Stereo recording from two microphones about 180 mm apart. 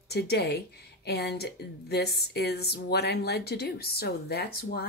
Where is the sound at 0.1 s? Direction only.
65° left (ahead or behind).